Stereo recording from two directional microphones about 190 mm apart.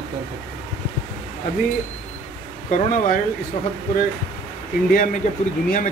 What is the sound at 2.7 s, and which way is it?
Speech, 45° left (ahead or behind).